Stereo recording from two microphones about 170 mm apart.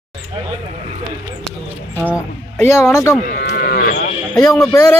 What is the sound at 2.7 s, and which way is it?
Speech, 15° left (ahead or behind).